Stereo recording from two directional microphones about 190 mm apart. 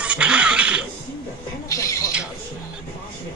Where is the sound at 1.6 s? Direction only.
15° left (ahead or behind).